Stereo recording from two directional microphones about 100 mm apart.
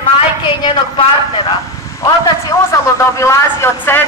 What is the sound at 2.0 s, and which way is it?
A man's voice, 30° left (ahead or behind).